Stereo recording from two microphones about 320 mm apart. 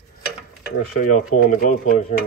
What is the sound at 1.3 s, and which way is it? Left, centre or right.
Speech, left.